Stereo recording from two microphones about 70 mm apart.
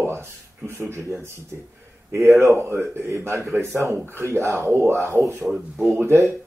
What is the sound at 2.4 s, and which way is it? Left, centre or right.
Speech, right.